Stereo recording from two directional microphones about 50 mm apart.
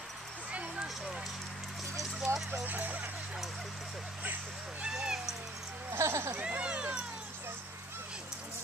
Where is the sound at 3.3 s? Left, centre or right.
Centre.